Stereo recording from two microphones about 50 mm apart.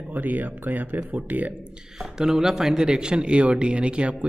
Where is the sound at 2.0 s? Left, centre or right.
Centre.